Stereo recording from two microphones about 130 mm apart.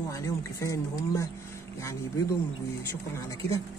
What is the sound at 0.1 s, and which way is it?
Speech, 25° left (ahead or behind).